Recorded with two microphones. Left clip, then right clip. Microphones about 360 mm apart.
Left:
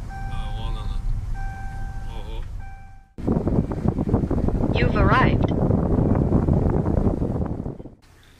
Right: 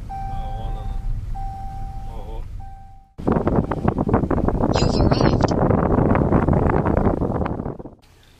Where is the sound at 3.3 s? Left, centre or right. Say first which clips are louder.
Right 5 dB; right.